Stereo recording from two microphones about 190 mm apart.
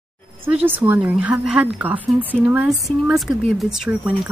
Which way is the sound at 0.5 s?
10° right (ahead or behind).